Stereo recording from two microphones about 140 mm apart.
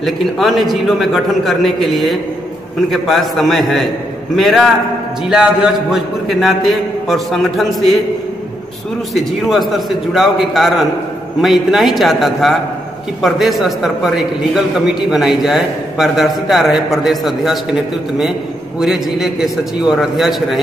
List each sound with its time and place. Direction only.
0.0 s a man's voice: centre (ahead or behind)
9.1 s a man's voice: centre (ahead or behind)
18.8 s a man's voice: 5° right (ahead or behind)